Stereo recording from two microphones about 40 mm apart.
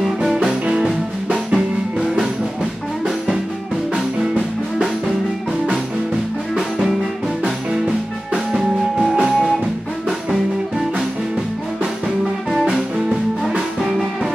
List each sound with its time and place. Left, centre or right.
0.2 s music: centre
3.9 s music: centre
9.1 s music: centre
13.5 s music: centre